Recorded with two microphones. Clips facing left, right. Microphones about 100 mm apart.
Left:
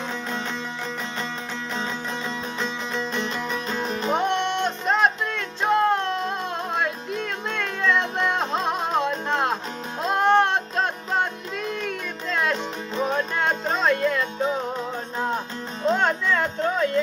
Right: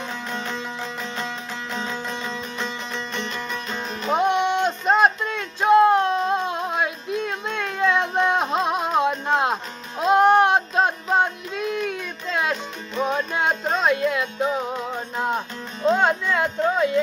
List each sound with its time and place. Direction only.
2.6 s music: centre (ahead or behind)
3.8 s music: 35° left (ahead or behind)
4.1 s music: 10° right (ahead or behind)